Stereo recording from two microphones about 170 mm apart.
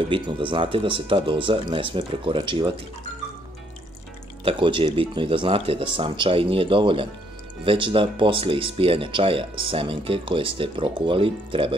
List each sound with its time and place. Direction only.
0.1 s speech: 30° right (ahead or behind)
4.5 s speech: 30° right (ahead or behind)